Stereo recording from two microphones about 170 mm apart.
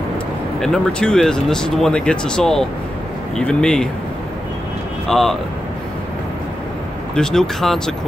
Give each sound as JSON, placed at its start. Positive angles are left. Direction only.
{"t": 0.6, "sound": "speech", "side_deg": 5}
{"t": 5.0, "sound": "speech", "side_deg": 0}
{"t": 7.2, "sound": "speech", "side_deg": 5}